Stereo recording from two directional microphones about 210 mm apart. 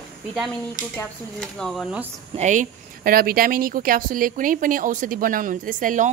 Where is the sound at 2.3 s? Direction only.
35° right (ahead or behind).